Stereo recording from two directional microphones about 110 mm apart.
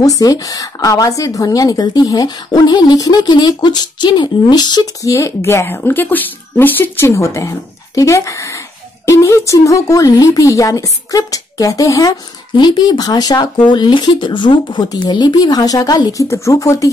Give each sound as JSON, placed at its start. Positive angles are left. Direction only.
{"t": 0.2, "sound": "a woman's voice", "side_deg": 35}
{"t": 5.1, "sound": "a woman's voice", "side_deg": 25}